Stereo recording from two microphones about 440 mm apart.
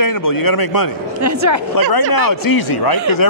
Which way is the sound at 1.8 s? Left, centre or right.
Left.